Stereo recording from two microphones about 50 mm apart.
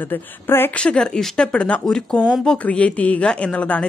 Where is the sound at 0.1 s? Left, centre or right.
Left.